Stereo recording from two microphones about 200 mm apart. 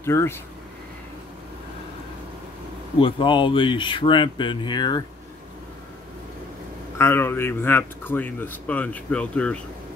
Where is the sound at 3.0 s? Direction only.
25° left (ahead or behind).